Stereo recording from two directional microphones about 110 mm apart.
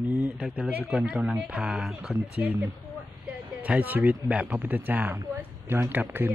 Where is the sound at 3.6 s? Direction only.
15° right (ahead or behind).